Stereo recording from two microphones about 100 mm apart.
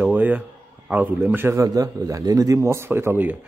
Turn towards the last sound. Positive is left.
turn(degrees=-20)  # may be behind; listen again after turning